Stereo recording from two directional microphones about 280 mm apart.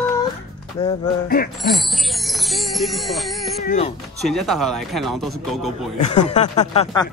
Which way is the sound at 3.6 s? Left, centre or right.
Left.